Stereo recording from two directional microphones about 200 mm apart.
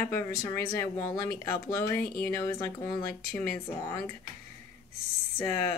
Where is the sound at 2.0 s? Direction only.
50° left (ahead or behind).